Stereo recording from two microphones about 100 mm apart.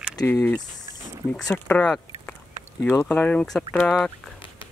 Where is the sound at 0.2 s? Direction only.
15° left (ahead or behind).